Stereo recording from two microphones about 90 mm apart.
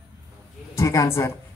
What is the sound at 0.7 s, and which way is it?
Speech, 35° left (ahead or behind).